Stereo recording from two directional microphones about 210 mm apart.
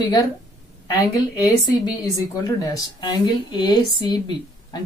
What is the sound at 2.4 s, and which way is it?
Speech, 15° left (ahead or behind).